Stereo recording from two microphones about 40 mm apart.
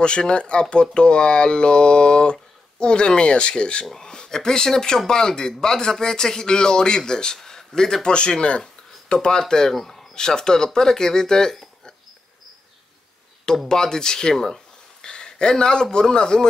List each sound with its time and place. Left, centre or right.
0.0 s a man's voice: left
8.1 s speech: left
9.8 s a sound: centre
10.1 s speech: centre
13.7 s speech: centre